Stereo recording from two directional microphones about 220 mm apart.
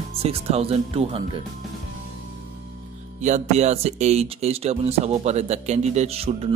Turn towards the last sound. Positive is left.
turn(degrees=-25)  # may be behind; listen again after turning